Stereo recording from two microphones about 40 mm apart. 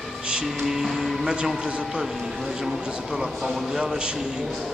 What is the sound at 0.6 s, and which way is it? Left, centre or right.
Music, centre.